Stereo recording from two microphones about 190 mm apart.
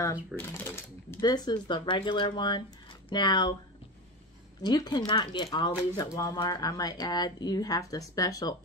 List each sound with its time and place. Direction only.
0.0 s speech: 15° left (ahead or behind)
4.6 s speech: 20° left (ahead or behind)